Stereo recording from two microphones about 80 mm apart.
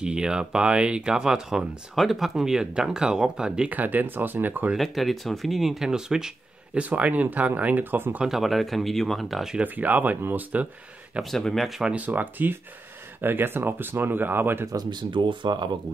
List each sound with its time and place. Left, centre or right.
0.0 s speech: centre
3.7 s speech: right
4.7 s speech: centre; by 8.2 s right
8.2 s speech: centre
9.6 s speech: right
11.2 s speech: centre
11.9 s speech: right
14.9 s speech: right